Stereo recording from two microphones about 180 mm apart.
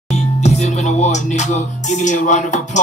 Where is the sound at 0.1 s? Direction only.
40° left (ahead or behind).